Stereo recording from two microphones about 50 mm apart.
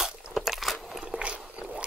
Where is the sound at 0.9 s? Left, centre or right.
Centre.